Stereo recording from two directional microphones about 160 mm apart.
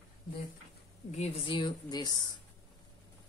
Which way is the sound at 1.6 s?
25° left (ahead or behind).